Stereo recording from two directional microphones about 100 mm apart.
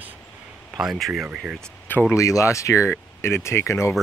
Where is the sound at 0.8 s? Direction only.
5° right (ahead or behind).